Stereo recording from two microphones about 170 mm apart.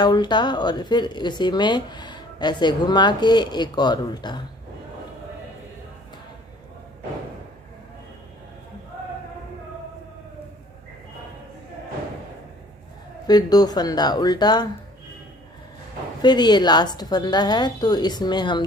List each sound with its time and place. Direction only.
0.0 s speech: 25° left (ahead or behind)
13.3 s speech: 25° left (ahead or behind)
16.2 s speech: 25° left (ahead or behind)